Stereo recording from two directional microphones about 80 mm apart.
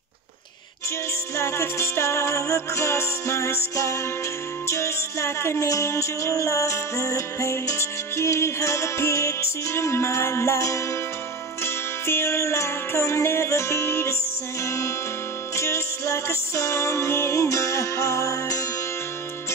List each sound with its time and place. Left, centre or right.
1.3 s music: left